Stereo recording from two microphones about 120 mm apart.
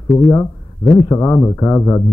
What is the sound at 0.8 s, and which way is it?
Speech, 30° left (ahead or behind).